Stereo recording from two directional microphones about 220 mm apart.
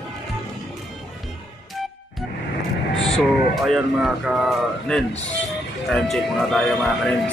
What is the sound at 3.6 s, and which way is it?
Speech, centre (ahead or behind).